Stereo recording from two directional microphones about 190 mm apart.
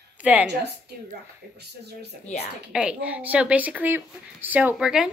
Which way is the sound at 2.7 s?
5° right (ahead or behind).